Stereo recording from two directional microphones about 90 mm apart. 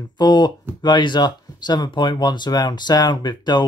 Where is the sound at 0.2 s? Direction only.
55° left (ahead or behind).